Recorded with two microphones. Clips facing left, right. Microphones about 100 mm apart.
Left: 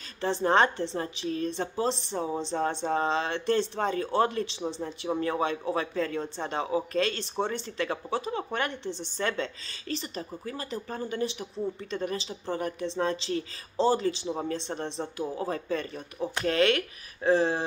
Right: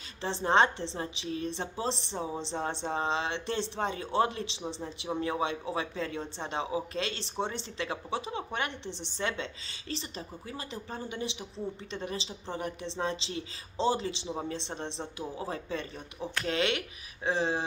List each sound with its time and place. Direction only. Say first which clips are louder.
0.2 s a woman's voice: left 2 dB; 20° right (ahead or behind)
14.2 s speech: left 4 dB; 20° left (ahead or behind)
14.5 s a woman's voice: left 4 dB; 20° right (ahead or behind)
15.2 s speech: left 5 dB; 30° left (ahead or behind)
15.5 s a woman's voice: left 5 dB; 25° right (ahead or behind)